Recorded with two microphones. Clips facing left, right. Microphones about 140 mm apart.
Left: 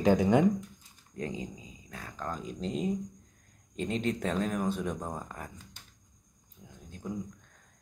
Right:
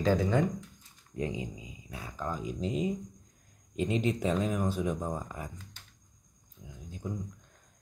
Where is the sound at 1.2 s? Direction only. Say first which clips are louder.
Right 2 dB; 15° right (ahead or behind).